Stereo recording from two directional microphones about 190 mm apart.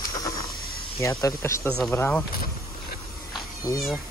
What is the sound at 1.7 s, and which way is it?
Speech, 5° left (ahead or behind).